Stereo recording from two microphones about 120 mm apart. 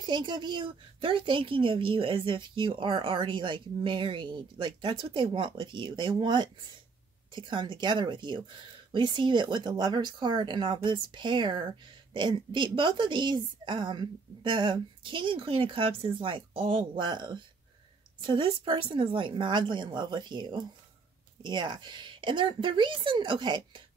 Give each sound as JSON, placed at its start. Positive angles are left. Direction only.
{"t": 0.0, "sound": "a woman's voice", "side_deg": -40}